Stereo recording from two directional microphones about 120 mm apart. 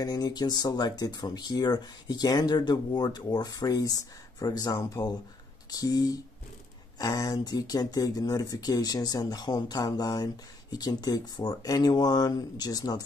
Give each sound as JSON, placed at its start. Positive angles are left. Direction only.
{"t": 0.0, "sound": "speech", "side_deg": 35}